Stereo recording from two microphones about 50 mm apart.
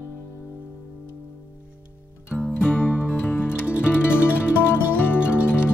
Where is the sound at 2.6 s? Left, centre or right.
Left.